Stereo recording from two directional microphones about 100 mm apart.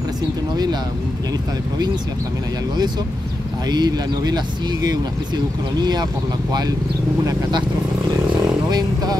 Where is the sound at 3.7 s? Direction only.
45° right (ahead or behind).